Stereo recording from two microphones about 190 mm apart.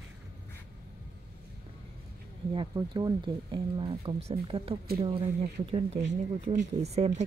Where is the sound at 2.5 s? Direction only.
25° right (ahead or behind).